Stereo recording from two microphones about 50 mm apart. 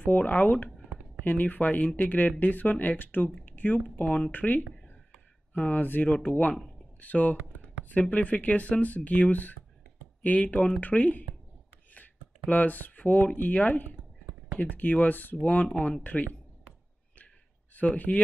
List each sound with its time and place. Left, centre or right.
0.0 s speech: left
3.4 s a sound: left
4.0 s speech: left
5.7 s speech: left
15.4 s speech: left
17.7 s speech: left